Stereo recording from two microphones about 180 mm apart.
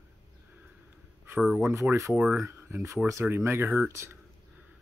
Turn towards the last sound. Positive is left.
turn(degrees=-15)  # may be behind; listen again after turning